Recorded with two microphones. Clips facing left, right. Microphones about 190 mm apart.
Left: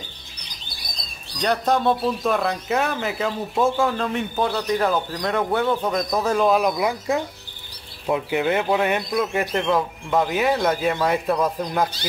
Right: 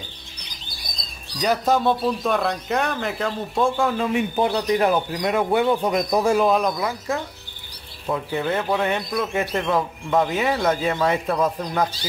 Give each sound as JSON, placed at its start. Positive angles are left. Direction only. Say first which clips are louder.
{"t": 1.4, "sound": "speech", "louder": "right 1 dB", "side_deg": -5}
{"t": 4.4, "sound": "speech", "louder": "right 1 dB", "side_deg": -15}
{"t": 6.8, "sound": "speech", "louder": "left 3 dB", "side_deg": 15}